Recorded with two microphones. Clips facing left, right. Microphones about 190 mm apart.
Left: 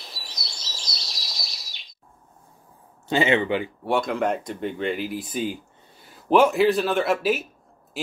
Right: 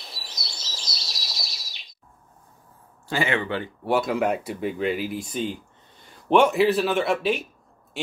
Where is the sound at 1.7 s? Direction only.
Centre (ahead or behind).